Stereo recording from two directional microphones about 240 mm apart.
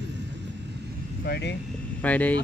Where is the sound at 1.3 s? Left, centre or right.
Left.